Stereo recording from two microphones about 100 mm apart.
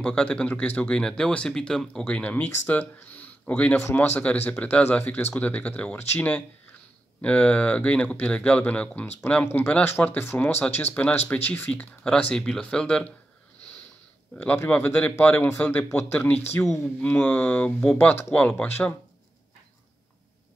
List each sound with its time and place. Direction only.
0.0 s speech: 10° left (ahead or behind)
14.3 s speech: 10° left (ahead or behind)
16.6 s speech: 30° left (ahead or behind)
17.0 s speech: 15° left (ahead or behind)